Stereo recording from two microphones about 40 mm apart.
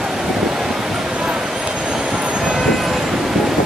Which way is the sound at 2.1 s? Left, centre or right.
Centre.